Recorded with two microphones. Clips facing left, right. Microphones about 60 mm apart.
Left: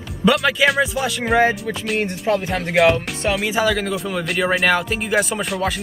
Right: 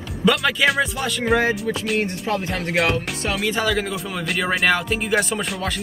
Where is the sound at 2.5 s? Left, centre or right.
Centre.